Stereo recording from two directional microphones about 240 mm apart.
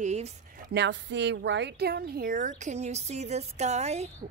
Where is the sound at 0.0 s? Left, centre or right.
Right.